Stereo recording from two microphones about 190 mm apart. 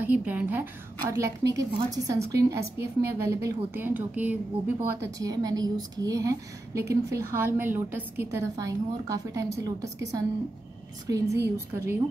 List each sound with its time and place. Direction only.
0.0 s a woman's voice: 10° right (ahead or behind)